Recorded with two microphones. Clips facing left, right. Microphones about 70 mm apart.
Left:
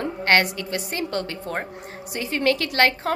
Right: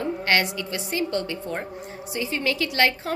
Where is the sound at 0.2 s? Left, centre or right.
Left.